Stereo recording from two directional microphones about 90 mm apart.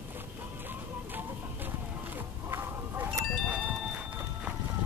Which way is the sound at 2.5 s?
25° right (ahead or behind).